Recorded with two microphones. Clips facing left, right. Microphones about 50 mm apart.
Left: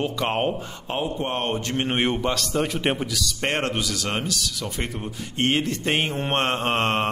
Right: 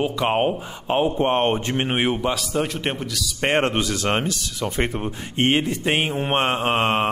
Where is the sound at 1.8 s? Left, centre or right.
Centre.